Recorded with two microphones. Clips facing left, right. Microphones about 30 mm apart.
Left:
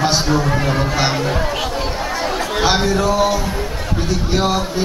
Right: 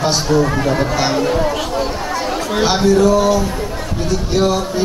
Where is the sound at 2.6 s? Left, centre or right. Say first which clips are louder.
Right 4 dB; centre.